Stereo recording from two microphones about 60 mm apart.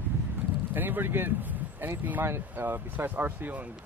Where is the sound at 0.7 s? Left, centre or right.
Right.